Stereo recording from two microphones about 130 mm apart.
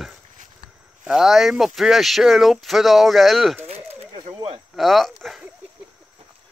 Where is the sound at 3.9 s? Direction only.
40° right (ahead or behind).